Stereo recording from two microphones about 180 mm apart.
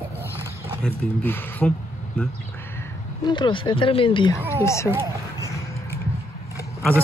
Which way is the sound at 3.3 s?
25° left (ahead or behind).